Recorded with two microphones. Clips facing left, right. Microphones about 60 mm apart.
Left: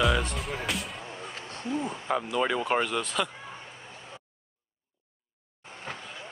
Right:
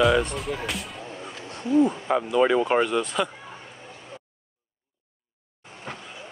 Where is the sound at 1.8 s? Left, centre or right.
Centre.